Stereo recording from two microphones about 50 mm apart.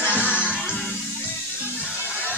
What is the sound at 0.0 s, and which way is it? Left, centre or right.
Music, left.